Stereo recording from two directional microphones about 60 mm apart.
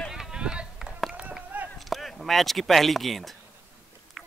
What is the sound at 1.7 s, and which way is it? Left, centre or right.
Speech, centre.